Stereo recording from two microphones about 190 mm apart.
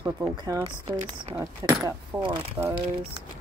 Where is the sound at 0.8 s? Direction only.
25° right (ahead or behind).